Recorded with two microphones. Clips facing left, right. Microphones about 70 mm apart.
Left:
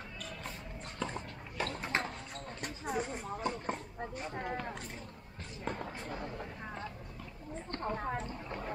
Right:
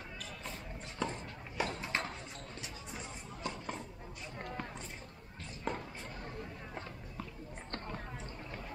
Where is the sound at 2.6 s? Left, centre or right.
Left.